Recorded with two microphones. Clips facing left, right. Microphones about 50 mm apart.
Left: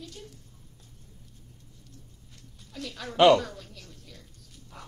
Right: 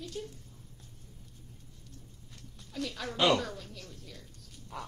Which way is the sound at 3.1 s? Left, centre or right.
Left.